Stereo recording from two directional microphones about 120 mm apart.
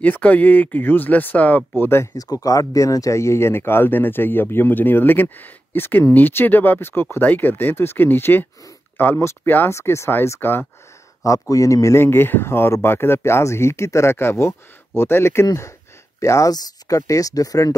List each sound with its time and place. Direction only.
0.0 s a man's voice: 15° left (ahead or behind); by 17.7 s 30° left (ahead or behind)